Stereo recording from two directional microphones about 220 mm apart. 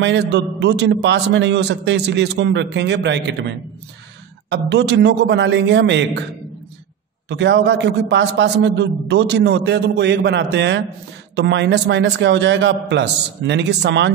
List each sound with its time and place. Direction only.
0.0 s a man's voice: 55° right (ahead or behind)
7.2 s a man's voice: 50° right (ahead or behind)